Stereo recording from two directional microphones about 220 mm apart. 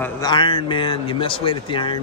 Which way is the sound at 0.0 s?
20° left (ahead or behind).